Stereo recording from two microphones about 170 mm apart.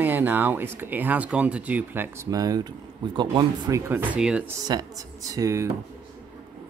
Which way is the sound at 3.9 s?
10° right (ahead or behind).